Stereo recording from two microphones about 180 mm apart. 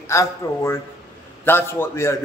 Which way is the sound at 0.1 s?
15° left (ahead or behind).